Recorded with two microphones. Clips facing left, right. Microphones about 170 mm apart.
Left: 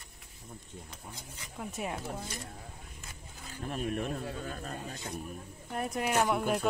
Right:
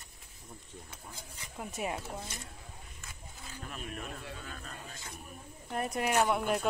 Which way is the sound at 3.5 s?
40° left (ahead or behind).